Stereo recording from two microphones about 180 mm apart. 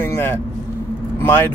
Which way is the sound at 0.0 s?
15° left (ahead or behind).